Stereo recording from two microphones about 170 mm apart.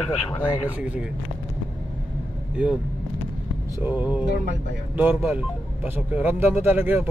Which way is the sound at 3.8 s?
10° right (ahead or behind).